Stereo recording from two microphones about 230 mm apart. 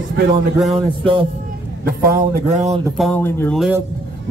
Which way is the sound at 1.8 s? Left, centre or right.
Right.